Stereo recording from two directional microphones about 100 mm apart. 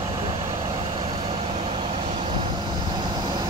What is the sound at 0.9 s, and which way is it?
Vehicle, 65° right (ahead or behind).